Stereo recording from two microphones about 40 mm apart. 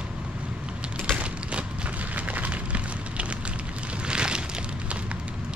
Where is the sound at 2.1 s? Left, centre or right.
Right.